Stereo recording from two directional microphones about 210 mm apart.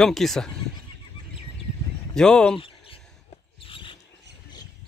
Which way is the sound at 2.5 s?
25° left (ahead or behind).